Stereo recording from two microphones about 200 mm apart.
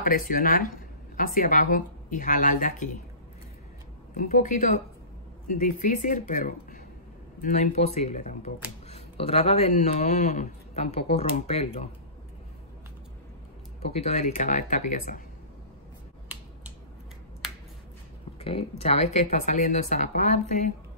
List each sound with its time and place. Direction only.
0.0 s speech: 45° left (ahead or behind)
4.1 s a man's voice: 40° left (ahead or behind)
13.8 s a man's voice: 30° left (ahead or behind)
17.4 s finger snapping: centre (ahead or behind)
18.4 s a man's voice: 30° left (ahead or behind)